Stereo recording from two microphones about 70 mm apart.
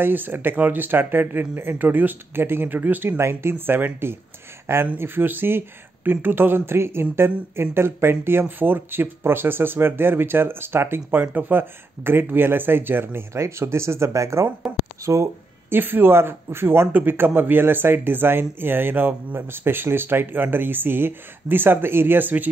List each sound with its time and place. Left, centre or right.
0.0 s speech: right
15.7 s speech: right